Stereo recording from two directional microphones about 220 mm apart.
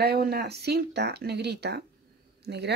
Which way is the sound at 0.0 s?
45° right (ahead or behind).